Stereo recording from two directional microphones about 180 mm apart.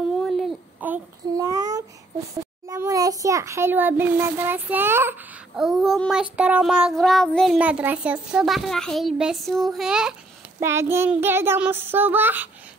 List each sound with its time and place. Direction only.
0.2 s a sound: centre (ahead or behind)
1.3 s child singing: 20° right (ahead or behind)
2.6 s a child's voice: 15° right (ahead or behind)
5.6 s child singing: centre (ahead or behind)
10.6 s child singing: 15° right (ahead or behind)